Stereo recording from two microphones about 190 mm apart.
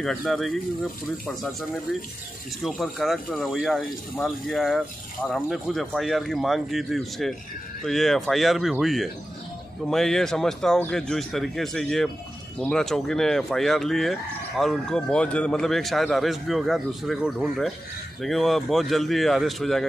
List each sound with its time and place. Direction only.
0.0 s a man's voice: centre (ahead or behind)